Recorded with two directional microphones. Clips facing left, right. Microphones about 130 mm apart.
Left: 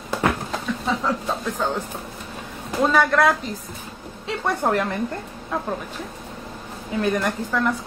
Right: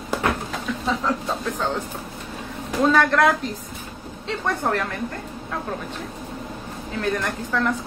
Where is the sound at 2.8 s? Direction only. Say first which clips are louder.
Even; 5° left (ahead or behind).